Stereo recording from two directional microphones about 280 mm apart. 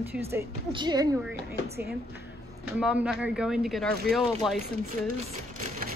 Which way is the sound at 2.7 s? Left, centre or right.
Centre.